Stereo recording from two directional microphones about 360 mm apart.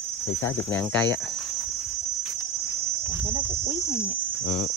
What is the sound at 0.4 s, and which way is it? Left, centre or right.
Speech, centre.